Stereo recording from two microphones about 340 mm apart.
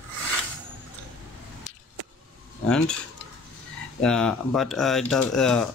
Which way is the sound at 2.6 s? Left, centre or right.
Centre.